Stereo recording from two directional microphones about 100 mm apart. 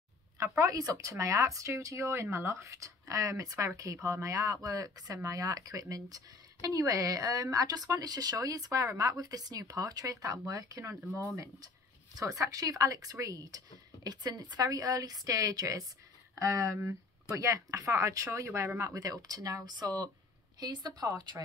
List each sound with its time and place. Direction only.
0.4 s speech: 35° right (ahead or behind)
12.2 s speech: 35° right (ahead or behind)